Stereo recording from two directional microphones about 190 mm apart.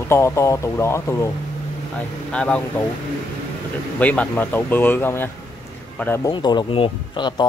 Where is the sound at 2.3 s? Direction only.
5° left (ahead or behind).